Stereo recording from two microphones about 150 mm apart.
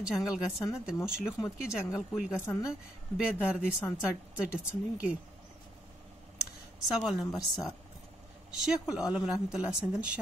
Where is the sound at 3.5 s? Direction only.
5° right (ahead or behind).